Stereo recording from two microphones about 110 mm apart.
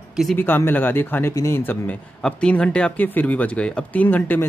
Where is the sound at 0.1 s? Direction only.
Centre (ahead or behind).